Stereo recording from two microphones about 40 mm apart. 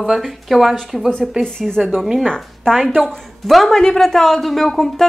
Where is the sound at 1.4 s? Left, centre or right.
Centre.